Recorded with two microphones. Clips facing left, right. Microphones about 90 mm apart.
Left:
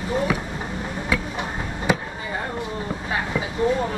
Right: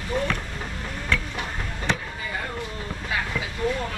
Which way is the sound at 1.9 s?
10° left (ahead or behind).